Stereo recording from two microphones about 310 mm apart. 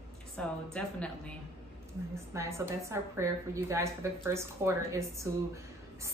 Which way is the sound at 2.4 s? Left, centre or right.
Centre.